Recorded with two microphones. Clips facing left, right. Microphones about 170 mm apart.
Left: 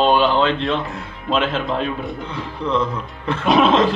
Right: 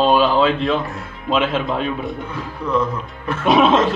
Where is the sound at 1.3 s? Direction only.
5° right (ahead or behind).